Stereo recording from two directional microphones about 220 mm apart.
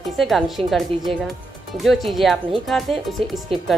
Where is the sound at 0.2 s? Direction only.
Centre (ahead or behind).